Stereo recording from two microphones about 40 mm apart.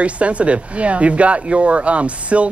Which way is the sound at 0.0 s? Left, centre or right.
Right.